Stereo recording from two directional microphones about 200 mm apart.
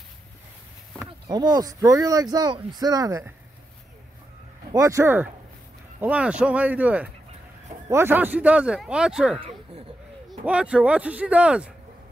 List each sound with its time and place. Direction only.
1.3 s speech: 20° right (ahead or behind)
4.7 s speech: 15° right (ahead or behind)
10.4 s speech: 5° right (ahead or behind)